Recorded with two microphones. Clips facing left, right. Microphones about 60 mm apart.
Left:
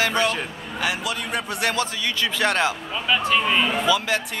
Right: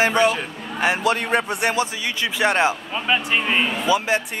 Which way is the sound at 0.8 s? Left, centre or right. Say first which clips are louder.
Right 6 dB; right.